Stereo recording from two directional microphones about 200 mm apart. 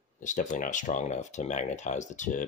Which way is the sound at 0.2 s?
40° left (ahead or behind).